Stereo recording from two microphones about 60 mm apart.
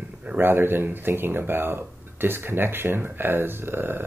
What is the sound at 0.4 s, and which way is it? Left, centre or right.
Speech, right.